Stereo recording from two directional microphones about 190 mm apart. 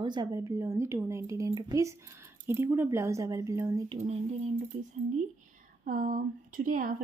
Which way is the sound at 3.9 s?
35° right (ahead or behind).